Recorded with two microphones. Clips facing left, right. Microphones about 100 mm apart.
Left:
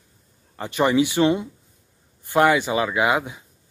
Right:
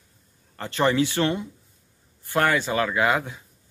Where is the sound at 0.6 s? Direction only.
15° left (ahead or behind).